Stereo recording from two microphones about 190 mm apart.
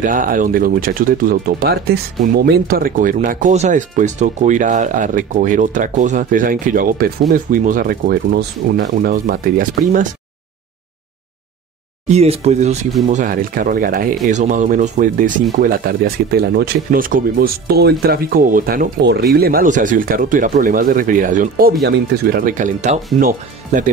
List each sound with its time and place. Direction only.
0.0 s speech: 45° right (ahead or behind)
12.1 s speech: 35° right (ahead or behind)
13.1 s speech: 45° right (ahead or behind)